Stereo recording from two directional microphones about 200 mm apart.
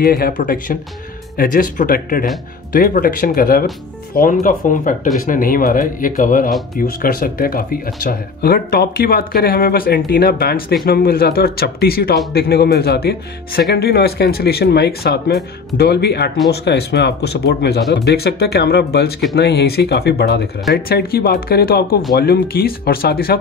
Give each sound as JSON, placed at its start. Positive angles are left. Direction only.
{"t": 0.0, "sound": "speech", "side_deg": 45}